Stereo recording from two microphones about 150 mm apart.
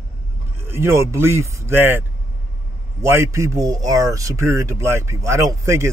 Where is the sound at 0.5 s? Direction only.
15° right (ahead or behind).